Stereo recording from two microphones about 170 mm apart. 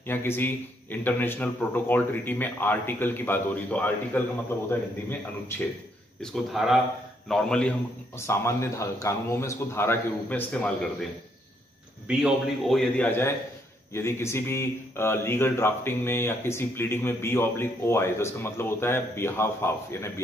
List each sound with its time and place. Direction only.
0.0 s speech: 15° left (ahead or behind)
6.2 s a man's voice: centre (ahead or behind)
8.3 s speech: 15° left (ahead or behind)
12.1 s a man's voice: centre (ahead or behind); by 20.1 s 15° left (ahead or behind)